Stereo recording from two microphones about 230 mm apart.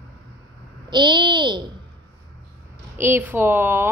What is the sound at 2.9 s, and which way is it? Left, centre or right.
Speech, centre.